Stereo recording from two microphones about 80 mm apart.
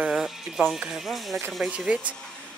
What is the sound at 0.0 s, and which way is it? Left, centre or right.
Music, centre.